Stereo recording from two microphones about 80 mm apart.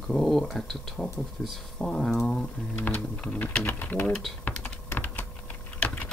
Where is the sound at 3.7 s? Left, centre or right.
Left.